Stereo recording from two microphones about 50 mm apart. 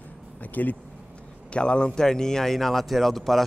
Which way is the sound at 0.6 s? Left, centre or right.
Left.